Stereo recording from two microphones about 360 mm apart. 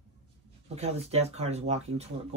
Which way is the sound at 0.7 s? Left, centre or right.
Centre.